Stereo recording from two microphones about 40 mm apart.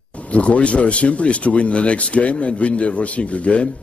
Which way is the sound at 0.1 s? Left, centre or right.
Left.